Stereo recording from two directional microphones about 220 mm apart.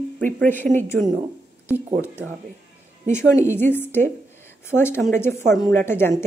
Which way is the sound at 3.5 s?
10° left (ahead or behind).